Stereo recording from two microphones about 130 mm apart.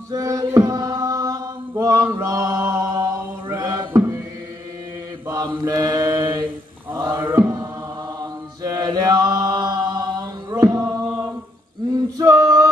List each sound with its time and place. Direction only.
0.1 s mantra: 30° right (ahead or behind)
5.7 s chant: 30° right (ahead or behind)
6.9 s mantra: 30° right (ahead or behind)
8.2 s chant: 30° right (ahead or behind)
10.5 s singing: 25° right (ahead or behind)
11.9 s male singing: 25° right (ahead or behind)